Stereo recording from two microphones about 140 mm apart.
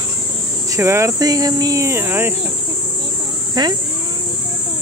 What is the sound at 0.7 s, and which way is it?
Speech, 20° right (ahead or behind).